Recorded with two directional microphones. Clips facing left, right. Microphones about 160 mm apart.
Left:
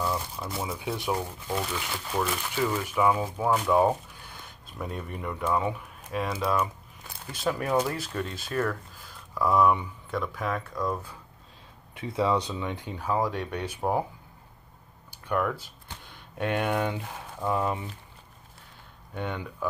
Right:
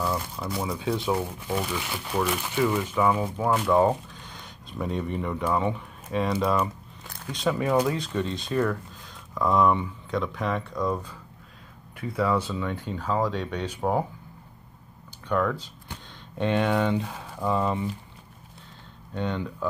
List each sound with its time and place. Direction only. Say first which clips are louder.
0.0 s speech: right 2 dB; centre (ahead or behind)
2.8 s speech: right 1 dB; 10° left (ahead or behind)
12.2 s speech: right 1 dB; 20° left (ahead or behind)
15.2 s speech: right 2 dB; 10° left (ahead or behind)
19.1 s speech: right 4 dB; 10° left (ahead or behind)